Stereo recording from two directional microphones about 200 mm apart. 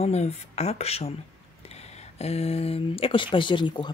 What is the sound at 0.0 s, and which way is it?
Speech, 30° left (ahead or behind).